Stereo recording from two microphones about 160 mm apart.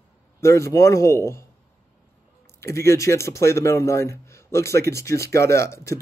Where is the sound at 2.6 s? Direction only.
15° left (ahead or behind).